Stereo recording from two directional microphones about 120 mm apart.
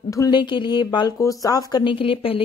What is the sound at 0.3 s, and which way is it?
Speech, 40° left (ahead or behind).